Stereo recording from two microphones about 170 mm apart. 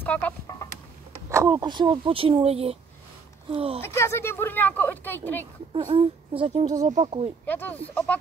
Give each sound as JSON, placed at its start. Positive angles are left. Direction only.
{"t": 0.0, "sound": "speech", "side_deg": 10}
{"t": 1.3, "sound": "speech", "side_deg": -20}
{"t": 3.8, "sound": "speech", "side_deg": 15}
{"t": 5.9, "sound": "speech", "side_deg": -30}
{"t": 7.4, "sound": "speech", "side_deg": 10}